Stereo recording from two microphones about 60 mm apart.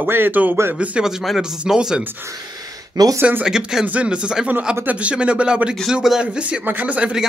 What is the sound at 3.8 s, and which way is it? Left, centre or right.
A man's voice, right.